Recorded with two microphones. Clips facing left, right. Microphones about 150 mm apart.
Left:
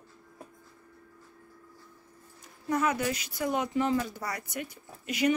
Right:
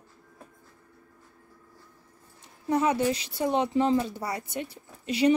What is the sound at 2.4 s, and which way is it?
Speech, 30° right (ahead or behind).